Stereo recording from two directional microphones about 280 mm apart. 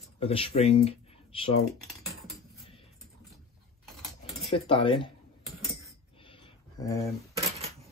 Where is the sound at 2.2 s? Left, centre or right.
Centre.